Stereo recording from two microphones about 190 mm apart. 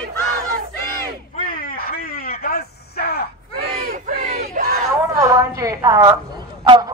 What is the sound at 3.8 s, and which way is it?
Battle cry, 50° right (ahead or behind).